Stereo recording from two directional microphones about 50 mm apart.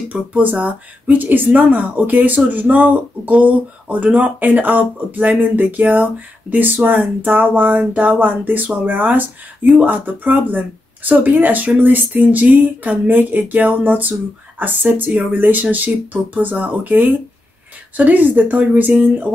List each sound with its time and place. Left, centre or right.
0.1 s speech: right